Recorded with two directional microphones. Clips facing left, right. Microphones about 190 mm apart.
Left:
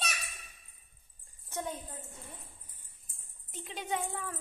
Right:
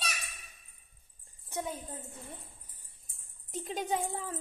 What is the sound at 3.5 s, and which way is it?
Speech, 40° right (ahead or behind).